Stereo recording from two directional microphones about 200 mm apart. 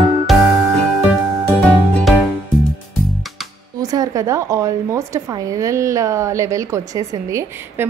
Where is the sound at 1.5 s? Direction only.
5° left (ahead or behind).